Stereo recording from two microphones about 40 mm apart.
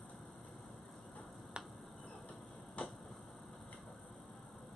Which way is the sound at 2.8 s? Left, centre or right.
Left.